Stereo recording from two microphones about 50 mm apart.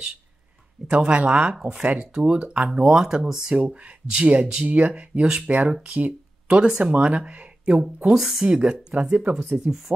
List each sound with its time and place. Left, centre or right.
0.8 s speech: right
1.6 s speech: centre
2.7 s speech: centre
3.6 s speech: right
4.6 s speech: right
8.1 s speech: centre
8.5 s speech: centre